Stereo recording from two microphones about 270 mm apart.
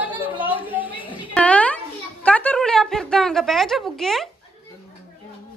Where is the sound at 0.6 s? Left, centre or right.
Centre.